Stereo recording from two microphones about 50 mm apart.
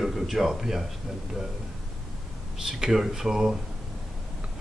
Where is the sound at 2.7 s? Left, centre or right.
Centre.